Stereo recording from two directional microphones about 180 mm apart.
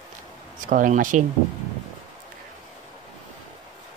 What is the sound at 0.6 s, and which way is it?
Speech, 45° right (ahead or behind).